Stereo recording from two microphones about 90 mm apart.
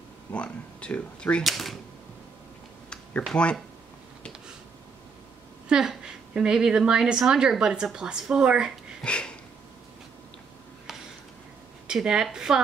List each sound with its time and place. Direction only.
0.3 s speech: 10° left (ahead or behind)
1.4 s speech: centre (ahead or behind)
2.9 s a sound: 15° left (ahead or behind)
3.3 s speech: 10° left (ahead or behind)
5.7 s a woman's voice: 10° right (ahead or behind)
9.0 s a sound: 10° left (ahead or behind)
11.9 s a woman's voice: 10° right (ahead or behind)